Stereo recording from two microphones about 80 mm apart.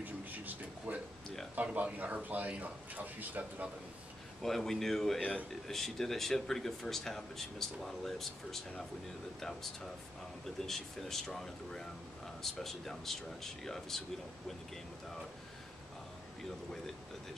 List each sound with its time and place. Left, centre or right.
0.0 s a sound: right
1.5 s speech: centre
4.4 s speech: centre